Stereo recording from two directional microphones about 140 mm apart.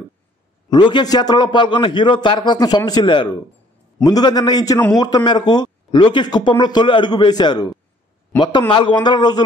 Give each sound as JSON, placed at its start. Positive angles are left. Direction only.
{"t": 0.7, "sound": "a man's voice", "side_deg": 35}